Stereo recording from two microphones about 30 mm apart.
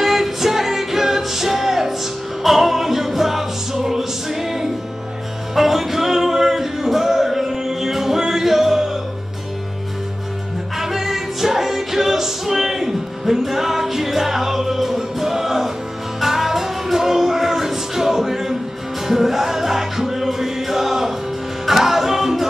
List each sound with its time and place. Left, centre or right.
0.0 s music: centre
10.8 s music: centre